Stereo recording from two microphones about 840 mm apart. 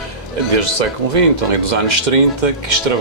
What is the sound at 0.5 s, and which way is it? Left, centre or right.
Speech, right.